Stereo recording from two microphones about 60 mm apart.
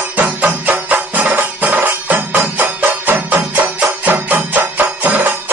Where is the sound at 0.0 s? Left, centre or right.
Right.